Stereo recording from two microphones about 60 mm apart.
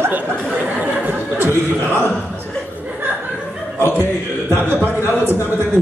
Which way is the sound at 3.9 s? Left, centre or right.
Right.